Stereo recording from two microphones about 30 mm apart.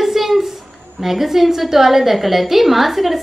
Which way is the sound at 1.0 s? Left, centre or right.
Centre.